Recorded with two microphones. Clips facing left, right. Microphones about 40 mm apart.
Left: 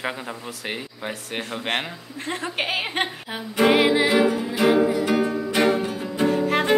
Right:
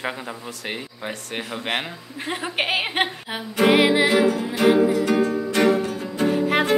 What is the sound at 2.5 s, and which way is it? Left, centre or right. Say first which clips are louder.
Speech: right 4 dB; centre.